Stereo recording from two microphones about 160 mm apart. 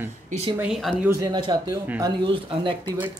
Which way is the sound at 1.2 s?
25° right (ahead or behind).